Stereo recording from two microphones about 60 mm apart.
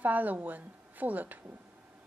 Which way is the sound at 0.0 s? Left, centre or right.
Right.